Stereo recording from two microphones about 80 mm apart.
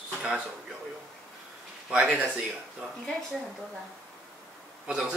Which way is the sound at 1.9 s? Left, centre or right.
Centre.